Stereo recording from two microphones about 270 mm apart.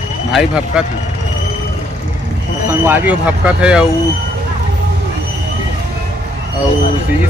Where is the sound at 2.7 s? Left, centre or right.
Centre.